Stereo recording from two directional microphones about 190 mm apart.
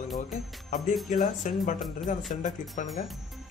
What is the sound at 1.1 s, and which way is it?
Speech, 45° left (ahead or behind).